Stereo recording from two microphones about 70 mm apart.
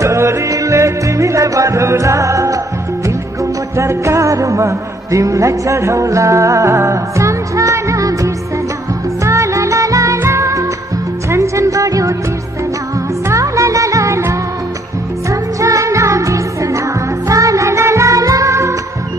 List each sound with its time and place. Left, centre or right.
0.0 s music: right
3.7 s music: right
10.1 s music: right
13.3 s music: right